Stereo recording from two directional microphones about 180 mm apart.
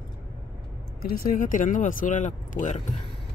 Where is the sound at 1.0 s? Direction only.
55° left (ahead or behind).